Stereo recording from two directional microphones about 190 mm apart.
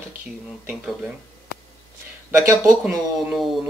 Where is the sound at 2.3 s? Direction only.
15° right (ahead or behind).